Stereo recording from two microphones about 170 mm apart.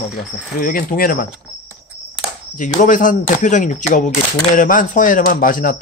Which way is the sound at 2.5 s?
50° left (ahead or behind).